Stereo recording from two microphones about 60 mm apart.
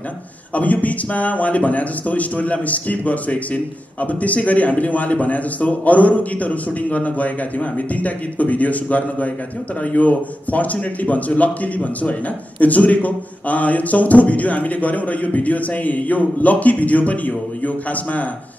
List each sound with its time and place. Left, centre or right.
0.6 s speech: left